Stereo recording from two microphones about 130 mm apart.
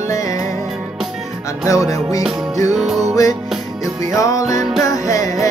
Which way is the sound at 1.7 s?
25° left (ahead or behind).